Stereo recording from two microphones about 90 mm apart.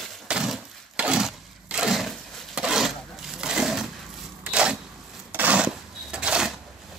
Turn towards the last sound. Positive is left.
turn(degrees=-10)  # may be behind; listen again after turning